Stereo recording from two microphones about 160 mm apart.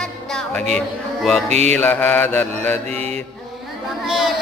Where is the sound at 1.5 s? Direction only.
45° right (ahead or behind).